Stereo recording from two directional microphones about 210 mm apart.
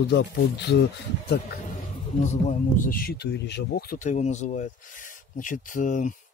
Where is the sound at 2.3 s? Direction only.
35° left (ahead or behind).